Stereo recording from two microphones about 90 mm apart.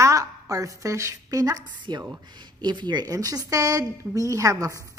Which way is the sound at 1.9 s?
20° left (ahead or behind).